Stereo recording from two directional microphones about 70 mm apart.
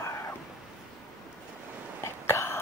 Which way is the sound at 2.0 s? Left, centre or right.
Left.